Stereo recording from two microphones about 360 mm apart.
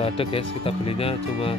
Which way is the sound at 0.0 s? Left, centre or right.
Centre.